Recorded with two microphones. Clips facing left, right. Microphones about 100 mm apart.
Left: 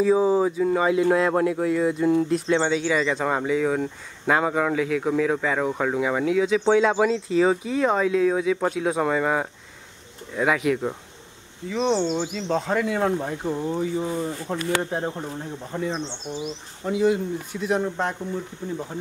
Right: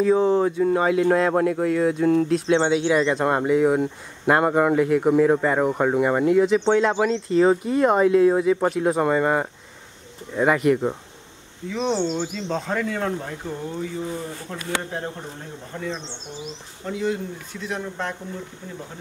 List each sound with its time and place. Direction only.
0.0 s speech: 5° left (ahead or behind)
2.7 s speech: 10° right (ahead or behind); by 18.1 s 20° left (ahead or behind)